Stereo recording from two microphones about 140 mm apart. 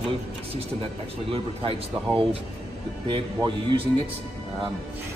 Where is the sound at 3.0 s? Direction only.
35° right (ahead or behind).